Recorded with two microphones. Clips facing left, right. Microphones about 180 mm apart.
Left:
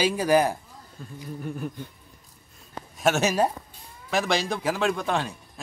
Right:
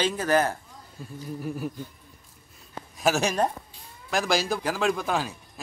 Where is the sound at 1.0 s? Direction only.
5° right (ahead or behind).